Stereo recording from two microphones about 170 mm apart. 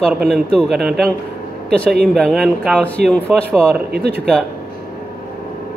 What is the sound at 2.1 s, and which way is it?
Speech, centre (ahead or behind).